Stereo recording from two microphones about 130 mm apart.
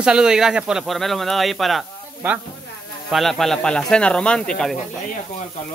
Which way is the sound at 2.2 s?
15° right (ahead or behind).